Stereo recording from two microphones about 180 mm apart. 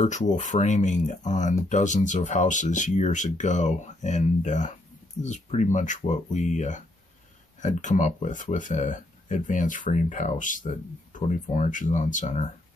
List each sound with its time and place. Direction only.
0.0 s speech: 40° left (ahead or behind)